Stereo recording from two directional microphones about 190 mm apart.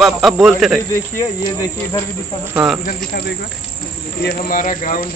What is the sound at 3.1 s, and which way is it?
Speech, 55° left (ahead or behind).